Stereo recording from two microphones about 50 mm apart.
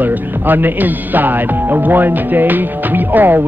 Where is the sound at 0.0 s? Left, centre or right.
Right.